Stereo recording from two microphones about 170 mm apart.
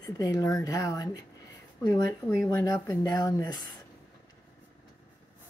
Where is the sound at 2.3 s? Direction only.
15° left (ahead or behind).